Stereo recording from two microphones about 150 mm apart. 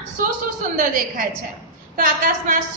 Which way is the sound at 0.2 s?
65° right (ahead or behind).